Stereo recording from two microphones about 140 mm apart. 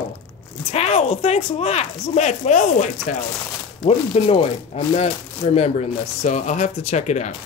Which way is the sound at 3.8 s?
45° left (ahead or behind).